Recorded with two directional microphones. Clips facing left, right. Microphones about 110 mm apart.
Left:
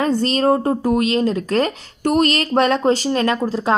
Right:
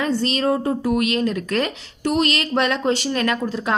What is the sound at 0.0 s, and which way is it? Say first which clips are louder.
Speech: left 4 dB; 40° left (ahead or behind).